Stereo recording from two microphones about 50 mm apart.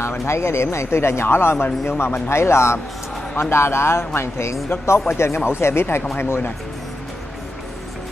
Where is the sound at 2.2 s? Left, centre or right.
Left.